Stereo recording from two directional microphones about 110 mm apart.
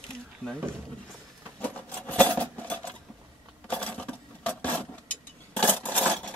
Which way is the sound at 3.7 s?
15° left (ahead or behind).